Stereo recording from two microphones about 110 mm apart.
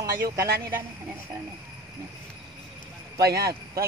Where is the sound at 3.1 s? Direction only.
30° right (ahead or behind).